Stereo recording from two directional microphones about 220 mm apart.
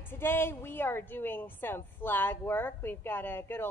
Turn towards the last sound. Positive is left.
turn(degrees=10)  # may be behind; listen again after turning